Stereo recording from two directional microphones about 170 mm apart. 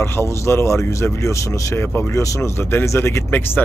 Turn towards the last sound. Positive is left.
turn(degrees=10)  # may be behind; listen again after turning